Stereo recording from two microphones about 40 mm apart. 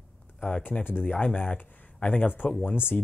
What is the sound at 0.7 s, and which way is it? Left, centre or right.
Speech, left.